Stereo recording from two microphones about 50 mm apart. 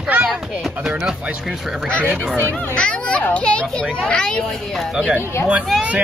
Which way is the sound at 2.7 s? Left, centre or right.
Left.